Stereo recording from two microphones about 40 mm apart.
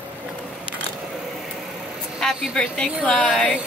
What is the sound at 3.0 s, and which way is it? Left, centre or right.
Speech, left.